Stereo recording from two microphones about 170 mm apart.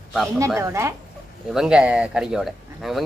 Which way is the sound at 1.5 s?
5° right (ahead or behind).